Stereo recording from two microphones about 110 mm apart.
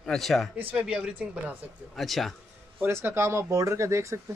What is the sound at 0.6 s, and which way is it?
Speech, 10° right (ahead or behind).